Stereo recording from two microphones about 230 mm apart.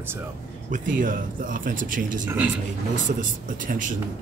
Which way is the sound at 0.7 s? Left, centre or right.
Right.